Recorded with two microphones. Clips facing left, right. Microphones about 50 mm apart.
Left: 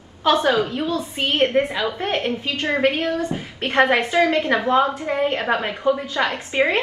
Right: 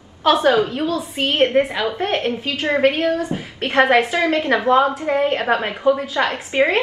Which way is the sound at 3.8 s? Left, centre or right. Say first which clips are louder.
Right 4 dB; centre.